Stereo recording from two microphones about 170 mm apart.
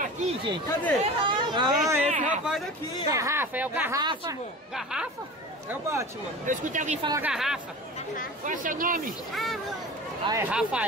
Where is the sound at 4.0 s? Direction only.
25° right (ahead or behind).